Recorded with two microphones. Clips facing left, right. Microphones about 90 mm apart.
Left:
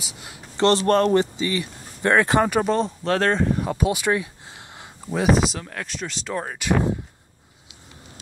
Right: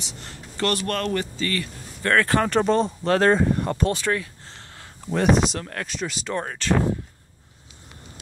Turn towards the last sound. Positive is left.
turn(degrees=10)  # may be behind; listen again after turning